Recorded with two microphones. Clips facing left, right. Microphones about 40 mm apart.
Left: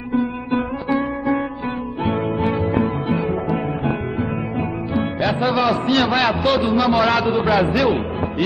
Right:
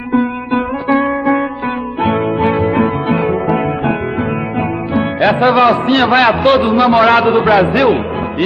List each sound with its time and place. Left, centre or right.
0.5 s music: right
4.6 s a man's voice: right